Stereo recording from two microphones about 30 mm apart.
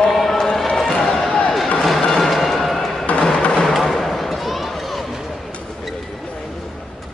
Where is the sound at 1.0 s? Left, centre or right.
Centre.